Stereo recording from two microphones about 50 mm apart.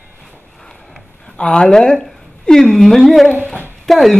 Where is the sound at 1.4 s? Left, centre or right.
Centre.